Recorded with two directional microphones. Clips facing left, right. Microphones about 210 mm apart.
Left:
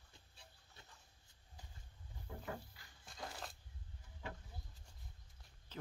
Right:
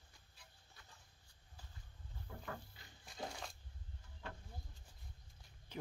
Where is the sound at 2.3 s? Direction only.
15° left (ahead or behind).